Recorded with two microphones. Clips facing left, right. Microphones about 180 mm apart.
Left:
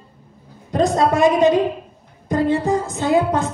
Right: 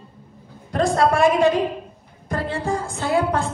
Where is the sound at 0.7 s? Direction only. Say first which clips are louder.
Left 2 dB; 20° left (ahead or behind).